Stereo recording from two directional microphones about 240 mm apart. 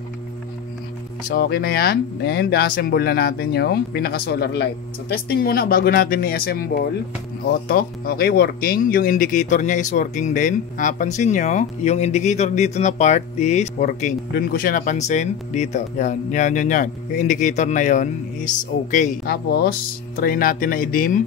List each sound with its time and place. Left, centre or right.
1.3 s speech: left